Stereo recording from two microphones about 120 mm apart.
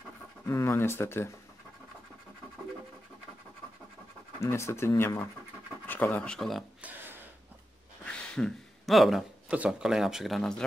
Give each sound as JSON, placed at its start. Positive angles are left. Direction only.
{"t": 0.5, "sound": "speech", "side_deg": 20}
{"t": 4.4, "sound": "speech", "side_deg": 25}
{"t": 6.8, "sound": "a sound", "side_deg": -15}
{"t": 8.0, "sound": "speech", "side_deg": 5}